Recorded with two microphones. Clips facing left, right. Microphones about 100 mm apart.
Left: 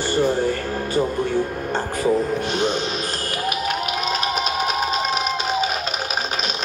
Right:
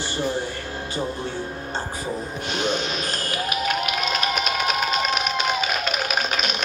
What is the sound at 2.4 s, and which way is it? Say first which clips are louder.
Speech: left 3 dB; 40° left (ahead or behind).